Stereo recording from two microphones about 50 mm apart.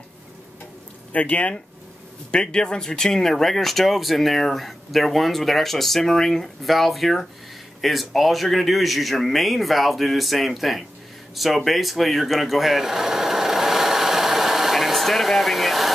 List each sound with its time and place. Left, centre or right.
1.1 s speech: left
2.3 s speech: centre